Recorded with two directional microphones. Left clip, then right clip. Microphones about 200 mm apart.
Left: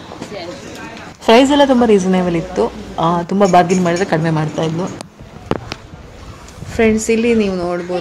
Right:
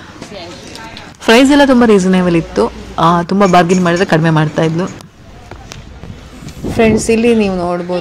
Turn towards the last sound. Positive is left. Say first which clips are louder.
# right 3 dB
turn(degrees=-10)  # may be behind; listen again after turning